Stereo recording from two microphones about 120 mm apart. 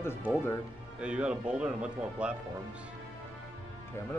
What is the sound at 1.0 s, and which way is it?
Speech, 10° right (ahead or behind).